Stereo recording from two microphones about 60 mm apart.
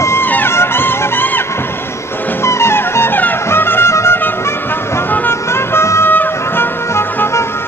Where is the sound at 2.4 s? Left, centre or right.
Left.